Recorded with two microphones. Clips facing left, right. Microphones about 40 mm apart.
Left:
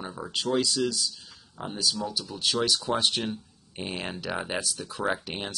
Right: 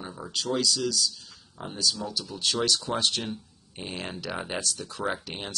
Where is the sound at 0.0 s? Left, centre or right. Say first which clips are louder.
Left 2 dB; centre.